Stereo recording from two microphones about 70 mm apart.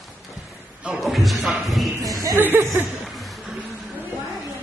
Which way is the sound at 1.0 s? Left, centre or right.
Centre.